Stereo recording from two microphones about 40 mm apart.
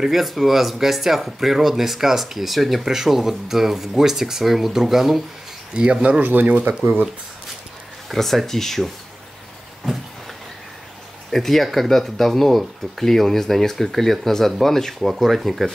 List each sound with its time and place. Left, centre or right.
0.1 s speech: centre
5.8 s speech: right
6.2 s speech: right
8.1 s speech: centre
11.3 s speech: centre